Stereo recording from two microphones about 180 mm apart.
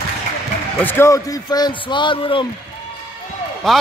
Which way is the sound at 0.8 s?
15° left (ahead or behind).